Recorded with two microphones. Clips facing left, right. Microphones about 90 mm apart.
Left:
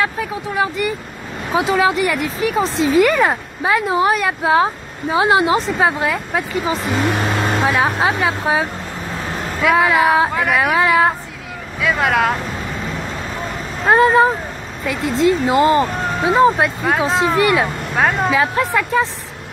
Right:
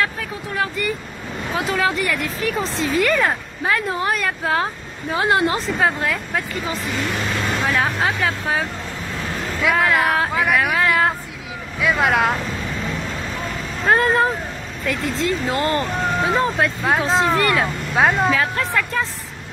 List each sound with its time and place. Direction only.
0.6 s speech: 10° left (ahead or behind)
7.1 s speech: 50° left (ahead or behind)
8.3 s speech: 15° left (ahead or behind)
9.6 s speech: centre (ahead or behind)
13.8 s speech: 5° left (ahead or behind)
15.4 s speech: 15° left (ahead or behind)
16.4 s speech: 15° left (ahead or behind)
16.8 s speech: centre (ahead or behind)
17.9 s speech: centre (ahead or behind)
18.3 s speech: 15° left (ahead or behind)